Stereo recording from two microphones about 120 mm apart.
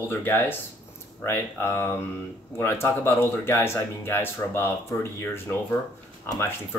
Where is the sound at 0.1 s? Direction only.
15° left (ahead or behind).